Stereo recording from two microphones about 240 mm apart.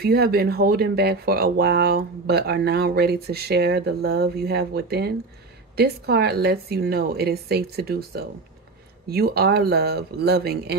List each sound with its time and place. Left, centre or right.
0.0 s speech: right